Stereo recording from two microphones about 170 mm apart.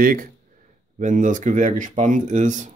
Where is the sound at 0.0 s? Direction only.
55° right (ahead or behind).